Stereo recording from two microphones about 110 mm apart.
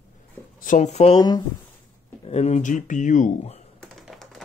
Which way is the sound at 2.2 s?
75° left (ahead or behind).